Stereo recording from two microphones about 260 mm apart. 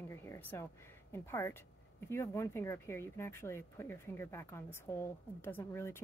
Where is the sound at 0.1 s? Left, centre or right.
Centre.